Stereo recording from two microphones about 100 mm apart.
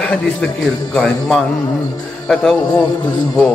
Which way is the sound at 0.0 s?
10° left (ahead or behind).